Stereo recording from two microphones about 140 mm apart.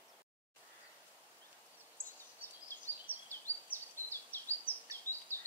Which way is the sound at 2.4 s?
15° left (ahead or behind).